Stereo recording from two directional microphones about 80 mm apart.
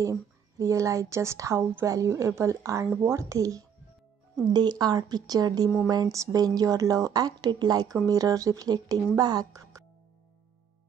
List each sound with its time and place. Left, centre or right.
0.0 s a woman's voice: right
4.5 s a woman's voice: right
8.1 s a woman's voice: right